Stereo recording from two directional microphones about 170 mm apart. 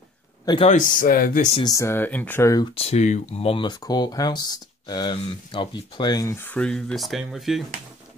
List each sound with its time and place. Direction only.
0.7 s speech: 50° left (ahead or behind)
1.5 s speech: 25° left (ahead or behind)
2.7 s speech: 35° left (ahead or behind); by 7.6 s centre (ahead or behind)